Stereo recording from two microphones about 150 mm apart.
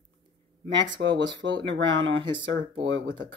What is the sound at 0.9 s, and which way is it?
Speech, 30° right (ahead or behind).